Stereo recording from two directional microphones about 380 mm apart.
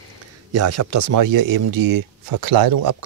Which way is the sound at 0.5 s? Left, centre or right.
Right.